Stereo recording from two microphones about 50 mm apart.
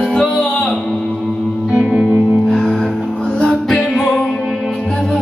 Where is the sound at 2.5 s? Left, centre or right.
Left.